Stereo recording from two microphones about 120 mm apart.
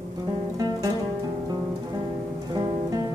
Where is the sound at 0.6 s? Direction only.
35° right (ahead or behind).